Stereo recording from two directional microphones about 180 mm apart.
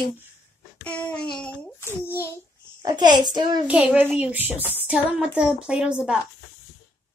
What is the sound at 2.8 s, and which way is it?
Speech, 25° right (ahead or behind).